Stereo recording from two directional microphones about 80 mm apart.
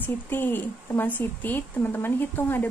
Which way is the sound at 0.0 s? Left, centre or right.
Left.